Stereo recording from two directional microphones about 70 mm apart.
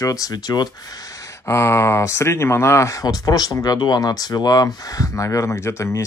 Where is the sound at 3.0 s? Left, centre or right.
Left.